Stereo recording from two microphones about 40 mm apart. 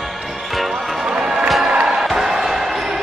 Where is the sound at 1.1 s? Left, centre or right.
Centre.